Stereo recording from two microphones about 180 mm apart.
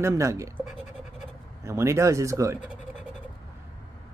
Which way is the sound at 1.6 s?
15° right (ahead or behind).